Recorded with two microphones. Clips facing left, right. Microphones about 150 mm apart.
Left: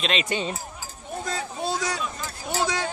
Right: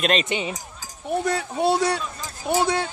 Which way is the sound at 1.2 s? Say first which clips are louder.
Right 6 dB; 65° right (ahead or behind).